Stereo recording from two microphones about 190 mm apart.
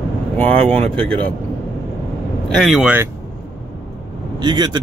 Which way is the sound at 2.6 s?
Centre (ahead or behind).